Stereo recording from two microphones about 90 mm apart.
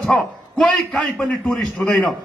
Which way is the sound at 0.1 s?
10° left (ahead or behind).